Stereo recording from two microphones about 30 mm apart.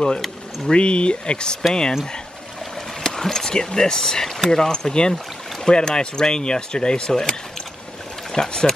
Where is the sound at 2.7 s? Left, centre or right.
Centre.